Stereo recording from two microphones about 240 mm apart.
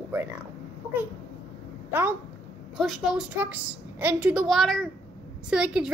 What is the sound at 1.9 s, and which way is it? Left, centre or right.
A woman's voice, centre.